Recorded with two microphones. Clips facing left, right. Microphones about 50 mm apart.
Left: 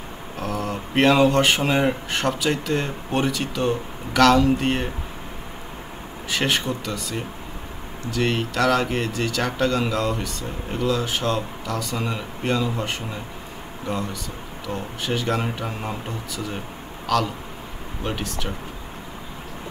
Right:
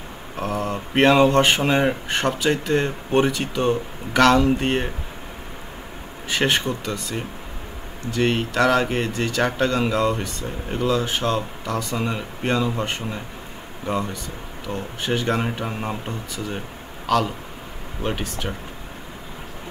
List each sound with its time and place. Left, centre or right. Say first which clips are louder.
0.4 s speech: right 2 dB; centre
6.3 s speech: right 2 dB; centre
14.7 s speech: right 2 dB; centre
16.4 s a sound: right 1 dB; centre
18.0 s speech: right 2 dB; centre